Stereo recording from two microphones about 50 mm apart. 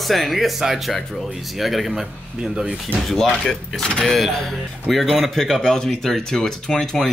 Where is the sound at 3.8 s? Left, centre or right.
Centre.